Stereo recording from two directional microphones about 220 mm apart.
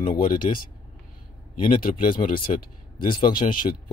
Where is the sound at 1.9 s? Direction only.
35° left (ahead or behind).